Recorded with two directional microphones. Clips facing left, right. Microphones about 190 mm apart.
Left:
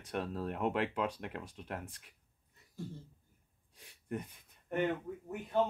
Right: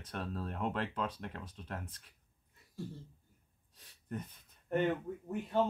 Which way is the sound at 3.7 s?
10° left (ahead or behind).